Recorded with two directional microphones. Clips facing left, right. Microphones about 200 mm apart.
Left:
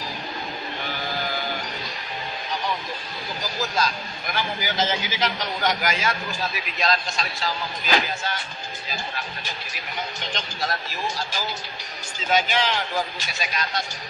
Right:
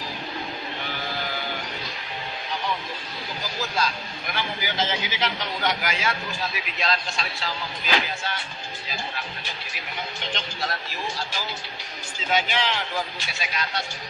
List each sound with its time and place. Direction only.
3.7 s a man's voice: 40° left (ahead or behind)